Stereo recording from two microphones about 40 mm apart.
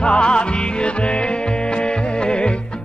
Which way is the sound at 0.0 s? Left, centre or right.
Left.